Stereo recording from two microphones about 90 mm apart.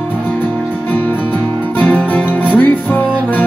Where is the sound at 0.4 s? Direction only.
20° left (ahead or behind).